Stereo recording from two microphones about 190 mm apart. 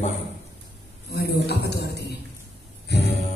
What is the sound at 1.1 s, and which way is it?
Speech, 60° left (ahead or behind).